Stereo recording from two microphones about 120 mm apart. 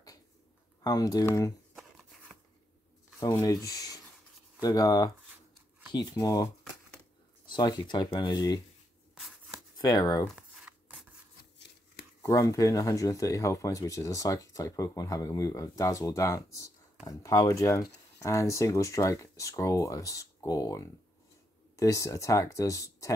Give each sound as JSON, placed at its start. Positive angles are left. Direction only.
{"t": 0.8, "sound": "speech", "side_deg": 30}
{"t": 1.8, "sound": "a sound", "side_deg": 0}
{"t": 3.2, "sound": "speech", "side_deg": 30}
{"t": 7.5, "sound": "speech", "side_deg": 35}
{"t": 9.8, "sound": "speech", "side_deg": 30}
{"t": 10.3, "sound": "shuffling cards", "side_deg": -10}
{"t": 12.2, "sound": "speech", "side_deg": 25}